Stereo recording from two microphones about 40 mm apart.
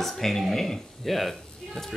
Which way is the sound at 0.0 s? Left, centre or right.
Centre.